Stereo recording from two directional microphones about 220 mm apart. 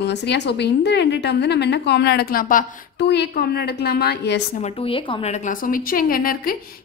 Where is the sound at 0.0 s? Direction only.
50° left (ahead or behind).